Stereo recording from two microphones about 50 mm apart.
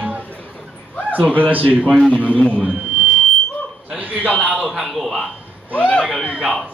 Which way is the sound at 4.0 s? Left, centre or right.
Right.